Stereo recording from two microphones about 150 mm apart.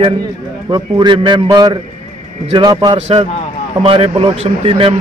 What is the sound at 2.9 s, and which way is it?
A man's voice, 45° right (ahead or behind).